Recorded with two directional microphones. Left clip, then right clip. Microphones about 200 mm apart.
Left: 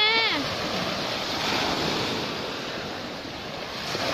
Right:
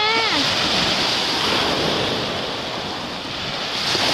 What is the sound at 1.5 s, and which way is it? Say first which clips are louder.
Waves: right 6 dB; 50° left (ahead or behind).